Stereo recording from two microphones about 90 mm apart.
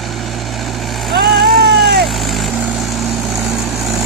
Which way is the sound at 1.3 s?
Centre (ahead or behind).